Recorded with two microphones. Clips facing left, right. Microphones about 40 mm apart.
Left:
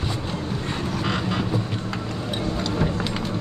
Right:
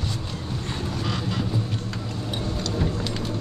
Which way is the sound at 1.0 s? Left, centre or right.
Left.